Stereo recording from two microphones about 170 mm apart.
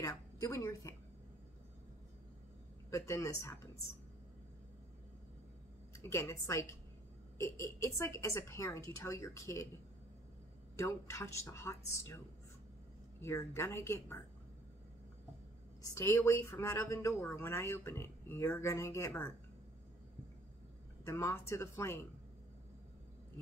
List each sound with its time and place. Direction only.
0.0 s a woman's voice: 20° left (ahead or behind)
2.9 s speech: 20° left (ahead or behind)
5.9 s speech: 15° left (ahead or behind)
10.8 s speech: 15° left (ahead or behind)
13.2 s speech: 15° left (ahead or behind)
15.8 s speech: 15° left (ahead or behind)
21.0 s speech: 15° left (ahead or behind)